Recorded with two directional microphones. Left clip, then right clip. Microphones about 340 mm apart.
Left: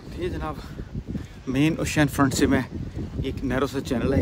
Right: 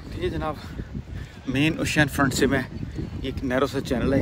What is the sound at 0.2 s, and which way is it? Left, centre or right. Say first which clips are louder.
Speech: right 2 dB; centre.